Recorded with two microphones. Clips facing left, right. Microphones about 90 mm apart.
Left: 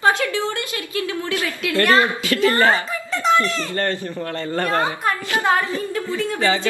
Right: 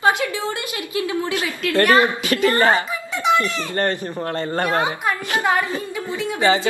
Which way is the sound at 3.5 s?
20° right (ahead or behind).